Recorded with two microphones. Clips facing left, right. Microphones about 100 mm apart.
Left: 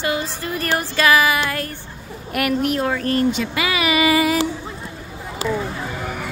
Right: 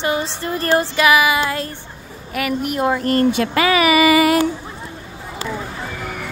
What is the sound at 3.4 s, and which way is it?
Speech, 45° right (ahead or behind).